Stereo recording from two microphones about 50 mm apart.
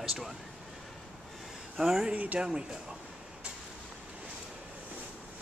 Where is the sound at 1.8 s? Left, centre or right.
Centre.